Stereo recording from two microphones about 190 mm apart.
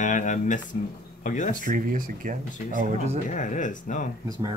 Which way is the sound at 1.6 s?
45° right (ahead or behind).